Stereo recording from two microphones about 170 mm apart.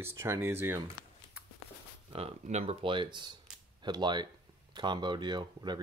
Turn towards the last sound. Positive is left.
turn(degrees=-25)  # may be behind; listen again after turning